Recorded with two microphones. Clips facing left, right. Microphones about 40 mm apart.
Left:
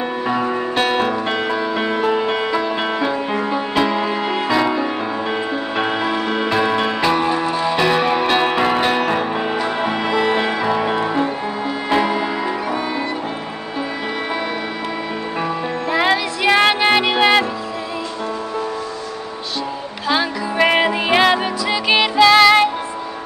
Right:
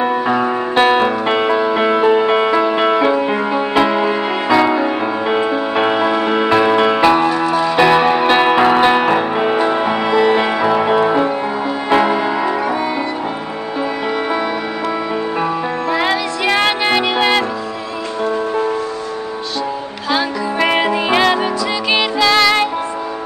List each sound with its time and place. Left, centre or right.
0.0 s music: centre
15.9 s music: centre
20.1 s music: centre